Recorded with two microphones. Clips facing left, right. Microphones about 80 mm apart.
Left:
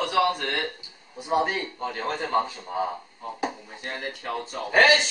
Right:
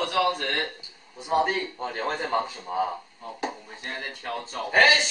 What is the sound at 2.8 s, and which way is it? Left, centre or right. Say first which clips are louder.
Chop: even; centre.